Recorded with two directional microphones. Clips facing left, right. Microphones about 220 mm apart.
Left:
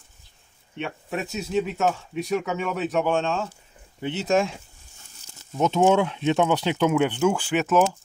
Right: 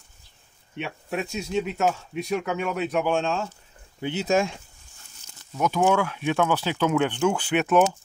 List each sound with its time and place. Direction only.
0.7 s speech: centre (ahead or behind)
5.5 s speech: 25° left (ahead or behind); by 7.8 s centre (ahead or behind)